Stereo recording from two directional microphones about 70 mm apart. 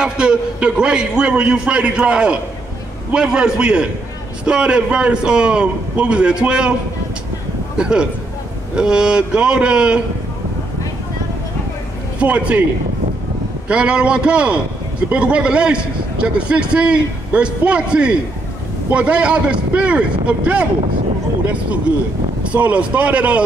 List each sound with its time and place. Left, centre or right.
0.0 s a man's voice: centre
7.7 s a man's voice: centre
12.2 s speech: centre
13.7 s a man's voice: centre
22.4 s speech: centre